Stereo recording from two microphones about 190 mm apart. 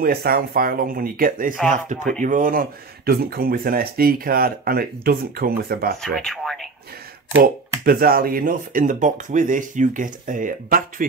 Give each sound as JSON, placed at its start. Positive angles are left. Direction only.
{"t": 0.0, "sound": "speech", "side_deg": -50}
{"t": 6.1, "sound": "a sound", "side_deg": 0}
{"t": 7.8, "sound": "speech", "side_deg": -50}